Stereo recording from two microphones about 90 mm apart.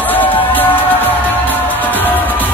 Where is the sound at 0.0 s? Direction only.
20° left (ahead or behind).